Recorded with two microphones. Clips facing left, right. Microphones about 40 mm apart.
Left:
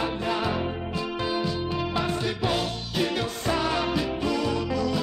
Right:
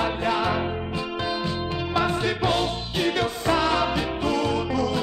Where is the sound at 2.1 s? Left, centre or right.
Right.